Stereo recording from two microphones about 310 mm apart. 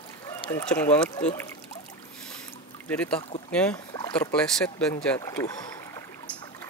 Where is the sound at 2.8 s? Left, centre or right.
Centre.